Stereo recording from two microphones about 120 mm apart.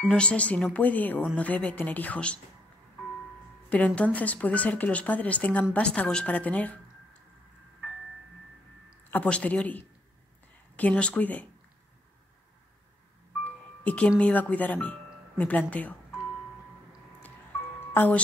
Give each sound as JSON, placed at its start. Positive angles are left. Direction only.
{"t": 0.1, "sound": "speech", "side_deg": 10}
{"t": 3.7, "sound": "speech", "side_deg": 10}
{"t": 9.1, "sound": "speech", "side_deg": 10}
{"t": 13.4, "sound": "music", "side_deg": 10}
{"t": 14.2, "sound": "speech", "side_deg": 10}
{"t": 17.7, "sound": "music", "side_deg": 15}